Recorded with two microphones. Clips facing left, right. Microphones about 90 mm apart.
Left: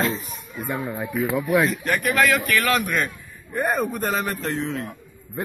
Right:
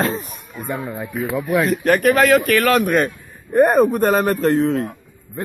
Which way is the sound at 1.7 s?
50° right (ahead or behind).